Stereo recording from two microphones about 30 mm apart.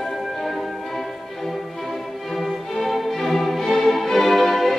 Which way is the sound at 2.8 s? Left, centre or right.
Centre.